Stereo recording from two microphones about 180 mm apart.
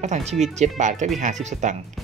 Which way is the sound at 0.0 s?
40° right (ahead or behind).